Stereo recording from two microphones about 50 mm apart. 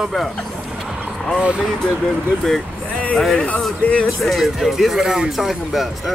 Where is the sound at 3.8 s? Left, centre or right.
Left.